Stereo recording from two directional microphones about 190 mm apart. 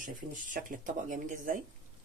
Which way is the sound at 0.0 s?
45° right (ahead or behind).